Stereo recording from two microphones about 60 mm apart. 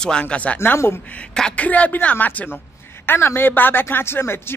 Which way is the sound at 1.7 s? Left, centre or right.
Left.